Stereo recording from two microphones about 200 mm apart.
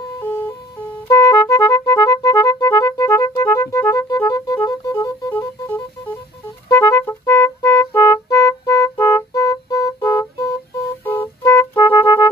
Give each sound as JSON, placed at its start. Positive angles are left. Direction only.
{"t": 1.0, "sound": "music", "side_deg": 15}